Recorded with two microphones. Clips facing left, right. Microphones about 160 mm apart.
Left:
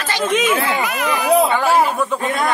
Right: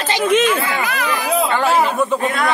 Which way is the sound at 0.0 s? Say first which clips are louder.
Right 2 dB; 15° right (ahead or behind).